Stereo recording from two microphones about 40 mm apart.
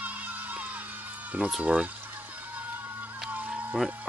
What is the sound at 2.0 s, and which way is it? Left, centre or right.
Music, right.